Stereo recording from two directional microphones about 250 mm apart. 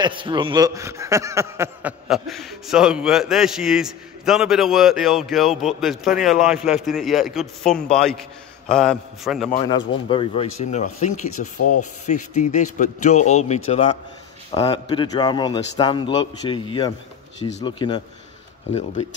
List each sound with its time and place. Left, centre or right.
0.0 s a man's voice: centre
10.0 s speech: left
11.5 s speech: left
11.8 s a man's voice: left